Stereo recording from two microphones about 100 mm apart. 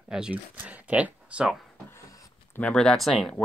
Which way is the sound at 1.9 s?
35° left (ahead or behind).